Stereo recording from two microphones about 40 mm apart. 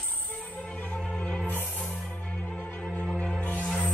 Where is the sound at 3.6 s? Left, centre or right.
Centre.